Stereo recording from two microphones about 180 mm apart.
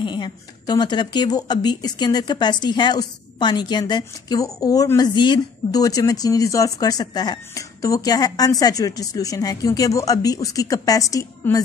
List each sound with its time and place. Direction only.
0.0 s speech: 25° left (ahead or behind)